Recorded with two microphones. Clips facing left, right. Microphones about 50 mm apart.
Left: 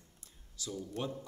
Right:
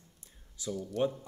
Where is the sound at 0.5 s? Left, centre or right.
Centre.